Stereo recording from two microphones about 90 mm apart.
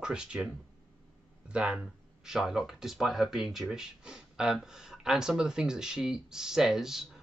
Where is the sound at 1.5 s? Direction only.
10° right (ahead or behind).